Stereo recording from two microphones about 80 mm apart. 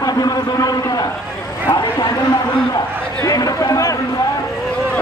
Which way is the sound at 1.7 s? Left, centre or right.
Left.